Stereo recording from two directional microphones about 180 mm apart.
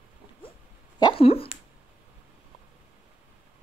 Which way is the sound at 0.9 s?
25° left (ahead or behind).